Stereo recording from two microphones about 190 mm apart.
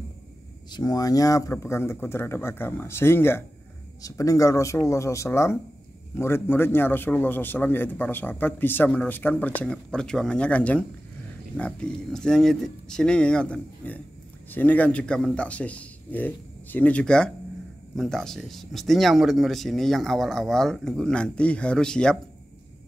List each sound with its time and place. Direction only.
0.7 s a man's voice: 20° left (ahead or behind); by 22.2 s 5° left (ahead or behind)